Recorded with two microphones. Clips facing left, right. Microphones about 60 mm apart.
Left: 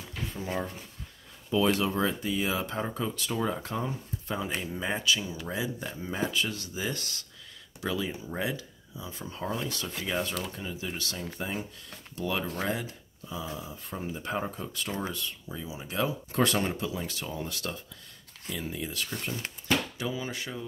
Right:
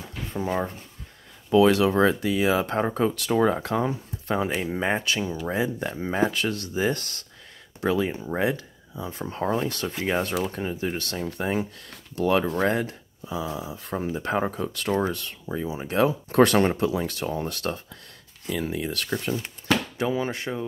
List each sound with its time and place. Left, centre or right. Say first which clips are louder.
0.3 s speech: right 8 dB; right
1.5 s speech: right 8 dB; right
18.5 s speech: right 7 dB; right
20.0 s speech: right 8 dB; right